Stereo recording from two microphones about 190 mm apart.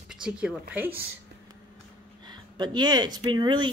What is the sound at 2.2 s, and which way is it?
Speech, 25° right (ahead or behind).